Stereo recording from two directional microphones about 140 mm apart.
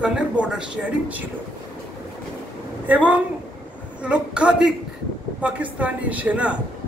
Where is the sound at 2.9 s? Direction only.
10° right (ahead or behind).